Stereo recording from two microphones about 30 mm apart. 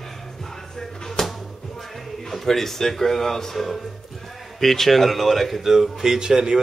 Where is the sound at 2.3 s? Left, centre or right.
Centre.